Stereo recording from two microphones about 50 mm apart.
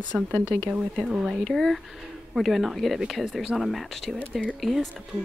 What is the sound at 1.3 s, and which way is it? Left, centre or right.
Speech, centre.